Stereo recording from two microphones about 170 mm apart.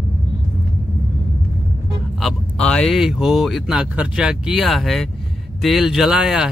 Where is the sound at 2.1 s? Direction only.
5° left (ahead or behind).